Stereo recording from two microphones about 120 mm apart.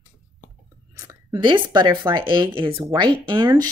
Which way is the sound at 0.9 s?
30° right (ahead or behind).